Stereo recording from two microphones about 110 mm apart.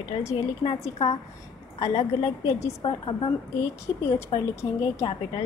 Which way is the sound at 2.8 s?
50° left (ahead or behind).